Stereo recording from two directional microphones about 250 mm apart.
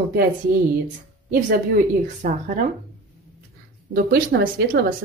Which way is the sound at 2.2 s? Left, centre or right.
Right.